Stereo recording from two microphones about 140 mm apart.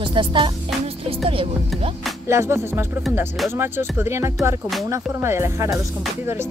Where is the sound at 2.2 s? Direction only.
20° right (ahead or behind).